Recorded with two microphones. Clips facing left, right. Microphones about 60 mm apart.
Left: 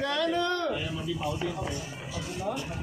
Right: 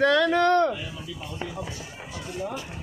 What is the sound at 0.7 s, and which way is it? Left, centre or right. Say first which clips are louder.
Speech: left 4 dB; centre.